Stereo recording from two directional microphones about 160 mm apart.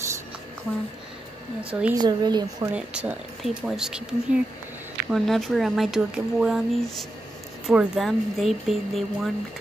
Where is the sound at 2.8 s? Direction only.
5° right (ahead or behind).